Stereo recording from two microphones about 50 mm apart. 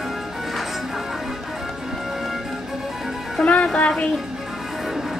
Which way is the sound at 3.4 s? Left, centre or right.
Left.